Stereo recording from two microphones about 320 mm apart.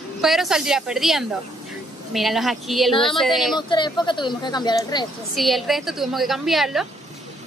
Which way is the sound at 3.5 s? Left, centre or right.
Centre.